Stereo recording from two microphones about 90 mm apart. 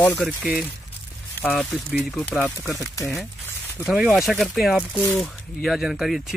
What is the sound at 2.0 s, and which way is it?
Speech, 5° left (ahead or behind).